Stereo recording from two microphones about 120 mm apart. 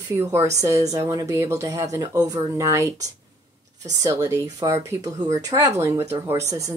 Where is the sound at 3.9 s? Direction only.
30° right (ahead or behind).